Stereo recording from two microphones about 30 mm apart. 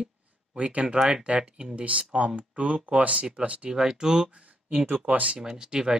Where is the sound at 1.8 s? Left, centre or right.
Right.